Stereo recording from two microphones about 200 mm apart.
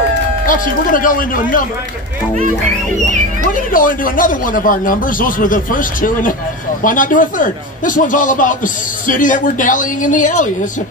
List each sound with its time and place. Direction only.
0.5 s speech: 45° left (ahead or behind)
3.5 s speech: 45° left (ahead or behind)